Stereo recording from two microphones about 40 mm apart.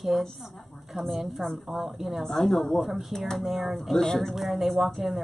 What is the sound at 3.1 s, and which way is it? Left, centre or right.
Speech, centre.